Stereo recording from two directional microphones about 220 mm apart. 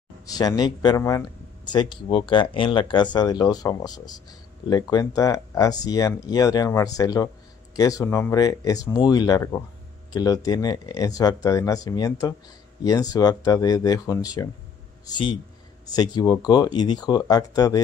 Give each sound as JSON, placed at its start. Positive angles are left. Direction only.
{"t": 0.3, "sound": "speech", "side_deg": 15}
{"t": 15.9, "sound": "speech", "side_deg": 15}